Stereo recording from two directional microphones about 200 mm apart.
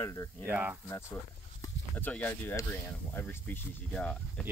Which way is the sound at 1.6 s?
10° left (ahead or behind).